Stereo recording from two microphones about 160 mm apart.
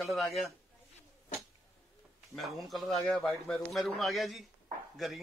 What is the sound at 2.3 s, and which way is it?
A man's voice, centre (ahead or behind).